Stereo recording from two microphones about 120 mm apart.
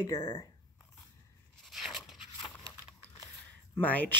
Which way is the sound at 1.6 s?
Centre (ahead or behind).